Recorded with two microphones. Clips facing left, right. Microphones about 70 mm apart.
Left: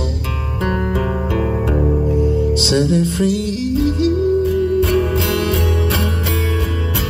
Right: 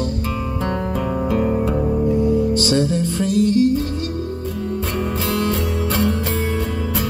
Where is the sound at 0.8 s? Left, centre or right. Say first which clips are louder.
Left 2 dB; left.